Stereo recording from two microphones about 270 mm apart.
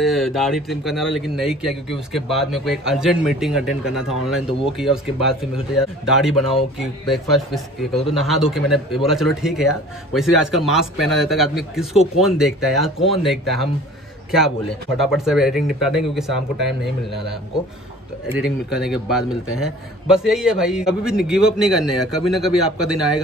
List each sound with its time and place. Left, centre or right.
0.0 s a man's voice: centre
15.0 s a man's voice: centre
18.4 s a man's voice: centre